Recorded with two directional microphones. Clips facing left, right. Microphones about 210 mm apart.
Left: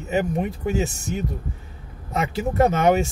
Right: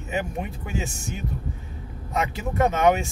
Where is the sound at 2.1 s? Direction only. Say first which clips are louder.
Left 3 dB; 40° left (ahead or behind).